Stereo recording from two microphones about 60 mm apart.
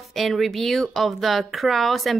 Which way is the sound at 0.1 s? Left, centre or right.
Centre.